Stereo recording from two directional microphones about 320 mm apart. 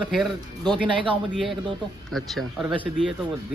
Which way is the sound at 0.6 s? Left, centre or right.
Centre.